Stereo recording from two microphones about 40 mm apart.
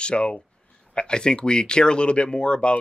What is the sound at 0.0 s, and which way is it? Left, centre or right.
Speech, left.